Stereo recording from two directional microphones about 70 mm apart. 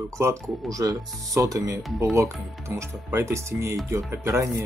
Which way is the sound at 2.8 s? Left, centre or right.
Right.